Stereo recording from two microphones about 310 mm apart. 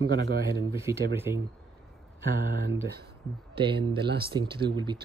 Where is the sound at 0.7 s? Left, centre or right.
Centre.